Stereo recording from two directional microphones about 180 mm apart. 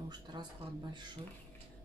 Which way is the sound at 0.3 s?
25° right (ahead or behind).